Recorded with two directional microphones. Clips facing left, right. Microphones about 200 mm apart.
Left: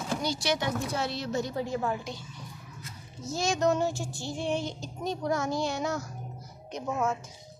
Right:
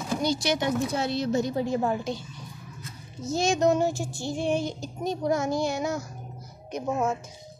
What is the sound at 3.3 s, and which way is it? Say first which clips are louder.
Child singing: right 4 dB; 20° right (ahead or behind).